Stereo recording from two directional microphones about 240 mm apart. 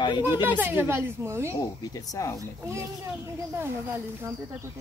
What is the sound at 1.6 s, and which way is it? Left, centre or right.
Speech, centre.